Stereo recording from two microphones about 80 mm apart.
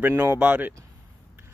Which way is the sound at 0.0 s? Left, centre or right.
Right.